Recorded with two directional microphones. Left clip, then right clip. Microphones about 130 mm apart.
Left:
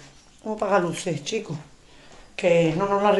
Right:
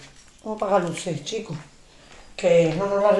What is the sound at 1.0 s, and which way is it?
Speech, 15° left (ahead or behind).